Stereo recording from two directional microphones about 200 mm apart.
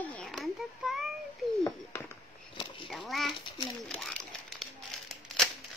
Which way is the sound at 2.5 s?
25° left (ahead or behind).